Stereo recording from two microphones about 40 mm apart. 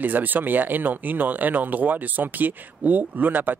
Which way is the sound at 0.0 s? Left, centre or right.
Right.